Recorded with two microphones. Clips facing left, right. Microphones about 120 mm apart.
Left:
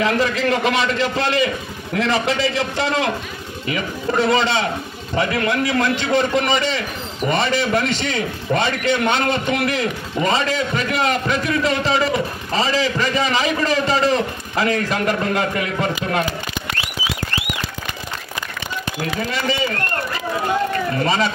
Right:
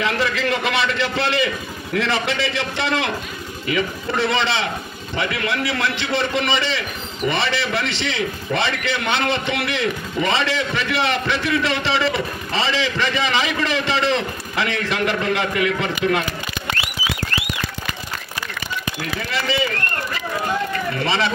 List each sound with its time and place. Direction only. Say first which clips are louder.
0.0 s a man's voice: left 3 dB; 40° left (ahead or behind)
19.1 s a man's voice: left 2 dB; 40° left (ahead or behind)
21.0 s a man's voice: left 2 dB; 40° left (ahead or behind)